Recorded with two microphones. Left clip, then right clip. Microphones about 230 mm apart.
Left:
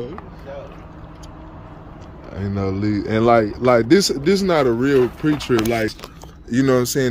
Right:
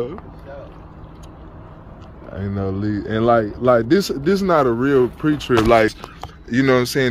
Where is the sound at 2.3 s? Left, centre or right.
Centre.